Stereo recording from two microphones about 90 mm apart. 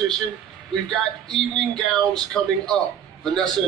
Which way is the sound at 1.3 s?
5° left (ahead or behind).